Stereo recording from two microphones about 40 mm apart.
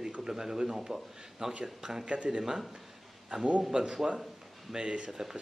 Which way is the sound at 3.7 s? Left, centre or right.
Centre.